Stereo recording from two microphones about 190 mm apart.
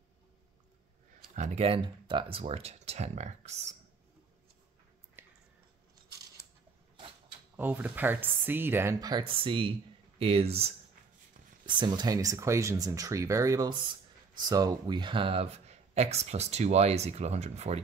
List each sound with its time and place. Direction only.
1.3 s speech: 35° right (ahead or behind)
5.2 s a sound: 10° right (ahead or behind)
7.5 s speech: 10° right (ahead or behind); by 17.8 s 35° right (ahead or behind)